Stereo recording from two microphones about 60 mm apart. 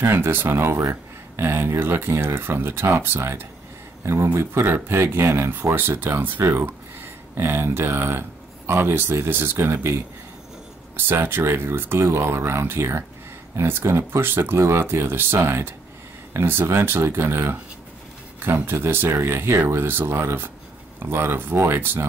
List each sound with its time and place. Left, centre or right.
0.0 s speech: right
11.0 s speech: right